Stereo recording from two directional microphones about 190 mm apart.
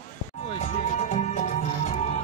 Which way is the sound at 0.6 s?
40° left (ahead or behind).